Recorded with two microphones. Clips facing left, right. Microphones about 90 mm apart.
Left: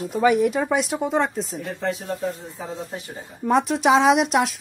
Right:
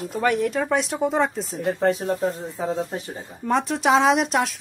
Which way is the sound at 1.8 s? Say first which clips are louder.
Right 4 dB; 40° right (ahead or behind).